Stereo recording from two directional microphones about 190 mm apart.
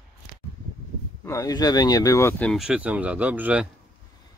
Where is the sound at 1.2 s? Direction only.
15° left (ahead or behind).